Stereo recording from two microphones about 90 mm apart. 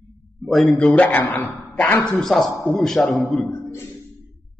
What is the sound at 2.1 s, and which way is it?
A man's voice, 5° left (ahead or behind).